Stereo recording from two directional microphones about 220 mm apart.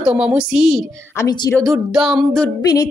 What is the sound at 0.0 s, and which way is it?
A woman's voice, 5° right (ahead or behind).